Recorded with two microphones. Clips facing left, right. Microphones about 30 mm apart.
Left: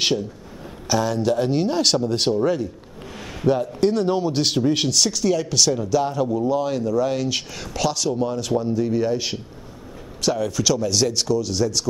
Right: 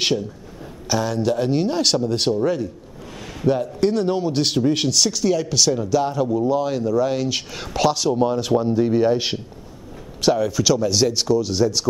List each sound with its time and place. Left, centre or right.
0.8 s a man's voice: centre
7.5 s speech: centre
10.4 s speech: centre